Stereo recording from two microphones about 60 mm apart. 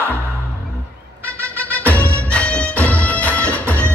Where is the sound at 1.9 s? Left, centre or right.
Left.